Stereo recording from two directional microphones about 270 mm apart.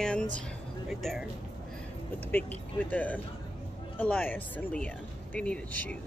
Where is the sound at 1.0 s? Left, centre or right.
Centre.